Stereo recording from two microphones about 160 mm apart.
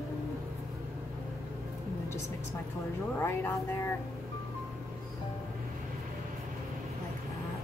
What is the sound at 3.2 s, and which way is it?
Speech, 15° left (ahead or behind).